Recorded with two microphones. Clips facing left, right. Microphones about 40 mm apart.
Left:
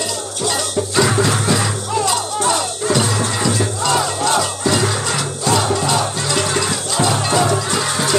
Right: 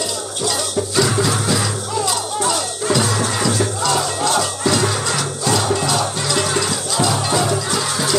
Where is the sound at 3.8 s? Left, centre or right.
Left.